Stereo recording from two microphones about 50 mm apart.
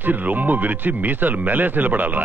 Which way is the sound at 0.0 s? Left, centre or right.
Right.